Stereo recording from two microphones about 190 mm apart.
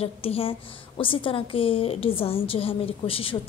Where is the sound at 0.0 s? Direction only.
30° left (ahead or behind).